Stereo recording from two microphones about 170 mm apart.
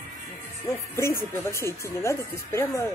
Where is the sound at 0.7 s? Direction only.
15° left (ahead or behind).